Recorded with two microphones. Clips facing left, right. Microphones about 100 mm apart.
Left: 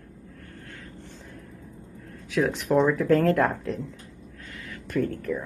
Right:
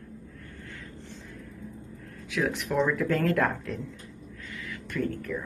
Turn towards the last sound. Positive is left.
turn(degrees=40)  # may be behind; listen again after turning